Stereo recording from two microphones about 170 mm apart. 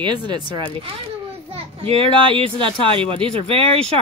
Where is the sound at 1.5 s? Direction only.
35° right (ahead or behind).